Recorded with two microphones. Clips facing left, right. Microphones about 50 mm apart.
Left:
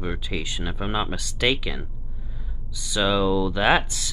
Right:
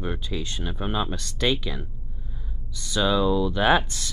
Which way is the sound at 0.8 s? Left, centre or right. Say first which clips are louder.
Left 1 dB; left.